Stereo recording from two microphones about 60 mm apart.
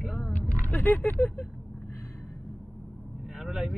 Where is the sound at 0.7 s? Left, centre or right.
Left.